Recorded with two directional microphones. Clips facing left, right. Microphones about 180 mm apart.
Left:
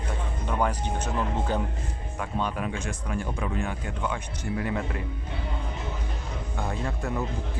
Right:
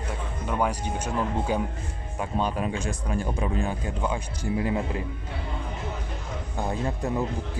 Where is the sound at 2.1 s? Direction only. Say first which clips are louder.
Right 3 dB; 30° right (ahead or behind).